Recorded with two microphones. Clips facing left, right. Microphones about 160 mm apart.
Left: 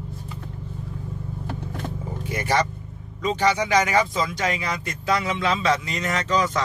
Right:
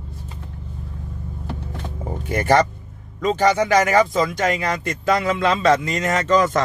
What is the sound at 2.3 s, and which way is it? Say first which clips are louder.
Speech: right 6 dB; 50° right (ahead or behind).